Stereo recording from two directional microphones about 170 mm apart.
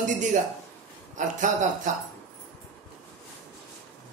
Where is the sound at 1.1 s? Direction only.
45° right (ahead or behind).